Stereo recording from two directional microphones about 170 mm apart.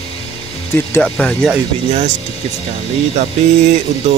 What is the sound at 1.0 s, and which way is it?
Speech, centre (ahead or behind).